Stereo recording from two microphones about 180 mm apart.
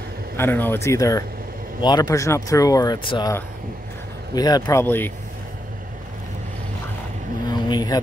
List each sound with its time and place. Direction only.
0.4 s speech: 10° left (ahead or behind)
4.4 s speech: 20° left (ahead or behind)
7.4 s vehicle: 25° left (ahead or behind)